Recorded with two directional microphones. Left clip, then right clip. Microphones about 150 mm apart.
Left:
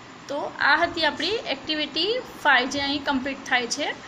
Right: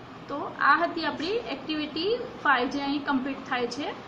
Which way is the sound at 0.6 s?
50° left (ahead or behind).